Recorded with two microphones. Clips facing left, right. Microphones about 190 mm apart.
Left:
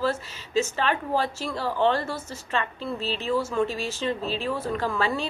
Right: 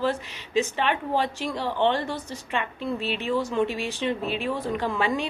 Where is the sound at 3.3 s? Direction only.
15° right (ahead or behind).